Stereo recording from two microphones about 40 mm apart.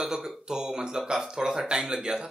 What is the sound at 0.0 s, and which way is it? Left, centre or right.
Speech, centre.